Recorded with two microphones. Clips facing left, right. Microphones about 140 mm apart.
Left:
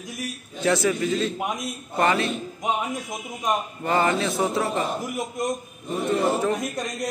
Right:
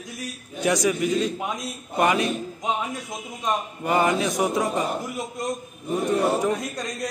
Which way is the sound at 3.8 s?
15° right (ahead or behind).